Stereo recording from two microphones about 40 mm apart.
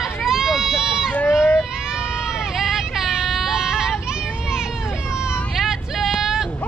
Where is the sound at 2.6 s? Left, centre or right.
Centre.